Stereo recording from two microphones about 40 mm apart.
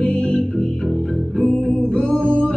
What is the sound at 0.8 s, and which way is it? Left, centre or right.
Music, centre.